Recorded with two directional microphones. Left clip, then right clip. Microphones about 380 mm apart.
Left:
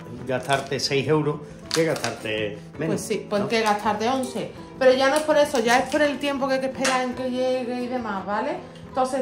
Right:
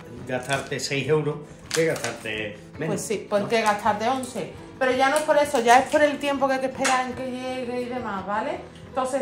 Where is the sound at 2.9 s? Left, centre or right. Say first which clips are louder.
Right 1 dB; centre.